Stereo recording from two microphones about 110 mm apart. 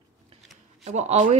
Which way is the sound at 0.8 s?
85° right.